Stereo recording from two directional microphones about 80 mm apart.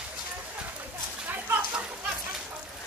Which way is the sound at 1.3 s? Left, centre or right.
Right.